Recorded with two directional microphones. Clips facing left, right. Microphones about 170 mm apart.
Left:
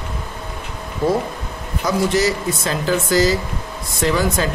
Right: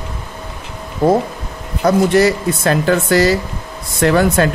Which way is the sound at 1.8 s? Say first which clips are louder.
Right 6 dB; 60° right (ahead or behind).